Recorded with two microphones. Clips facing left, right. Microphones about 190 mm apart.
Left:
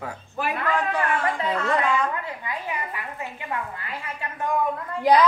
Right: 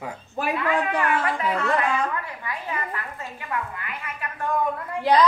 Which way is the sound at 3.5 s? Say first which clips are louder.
Right 2 dB; 30° left (ahead or behind).